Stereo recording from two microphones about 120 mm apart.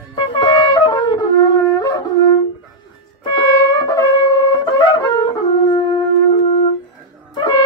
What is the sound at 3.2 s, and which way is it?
Wind instrument, 40° left (ahead or behind).